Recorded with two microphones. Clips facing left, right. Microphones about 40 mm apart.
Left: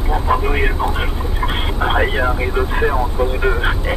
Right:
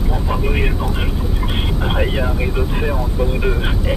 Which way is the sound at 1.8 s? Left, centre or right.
Centre.